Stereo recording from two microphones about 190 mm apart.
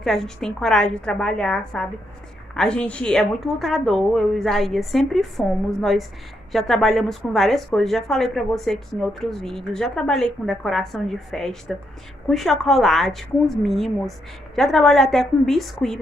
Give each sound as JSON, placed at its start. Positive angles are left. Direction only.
{"t": 0.0, "sound": "a woman's voice", "side_deg": 0}